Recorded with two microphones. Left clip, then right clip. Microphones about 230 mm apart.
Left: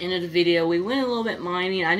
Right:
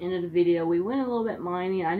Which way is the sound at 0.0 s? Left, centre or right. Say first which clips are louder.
Left 2 dB; left.